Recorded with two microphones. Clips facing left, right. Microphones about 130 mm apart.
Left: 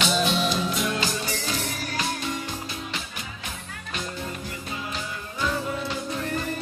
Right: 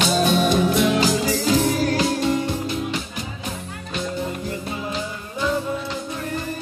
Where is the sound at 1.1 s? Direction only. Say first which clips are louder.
Right 10 dB; 90° right.